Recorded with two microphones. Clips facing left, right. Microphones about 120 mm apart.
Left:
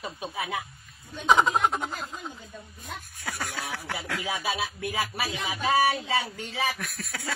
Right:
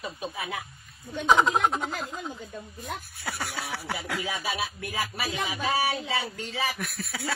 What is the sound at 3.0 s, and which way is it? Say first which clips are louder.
Speech: even; 5° right (ahead or behind).